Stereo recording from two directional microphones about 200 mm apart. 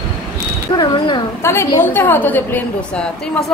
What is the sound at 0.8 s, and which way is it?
A woman's voice, 15° left (ahead or behind).